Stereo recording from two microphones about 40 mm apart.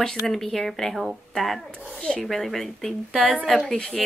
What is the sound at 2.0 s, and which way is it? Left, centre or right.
Speech, left.